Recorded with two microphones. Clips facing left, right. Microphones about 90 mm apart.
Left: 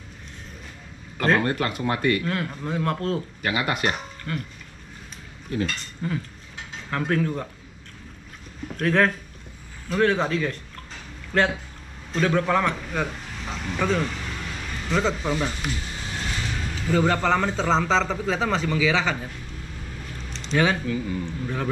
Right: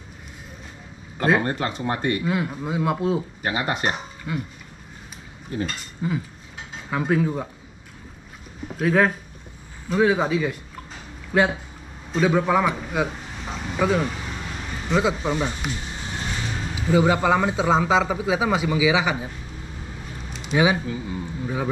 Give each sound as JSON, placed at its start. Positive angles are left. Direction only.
{"t": 1.2, "sound": "a man's voice", "side_deg": -10}
{"t": 1.9, "sound": "speech", "side_deg": 75}
{"t": 2.2, "sound": "a man's voice", "side_deg": -10}
{"t": 3.4, "sound": "speech", "side_deg": 90}
{"t": 3.9, "sound": "speech", "side_deg": -10}
{"t": 5.6, "sound": "a man's voice", "side_deg": -10}
{"t": 6.7, "sound": "mechanisms", "side_deg": -10}
{"t": 8.6, "sound": "a man's voice", "side_deg": -5}
{"t": 14.9, "sound": "a sound", "side_deg": -10}
{"t": 16.4, "sound": "a man's voice", "side_deg": -15}